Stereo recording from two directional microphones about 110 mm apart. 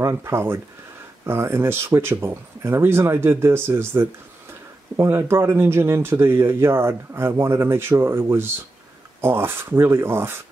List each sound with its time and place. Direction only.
0.0 s speech: 20° right (ahead or behind)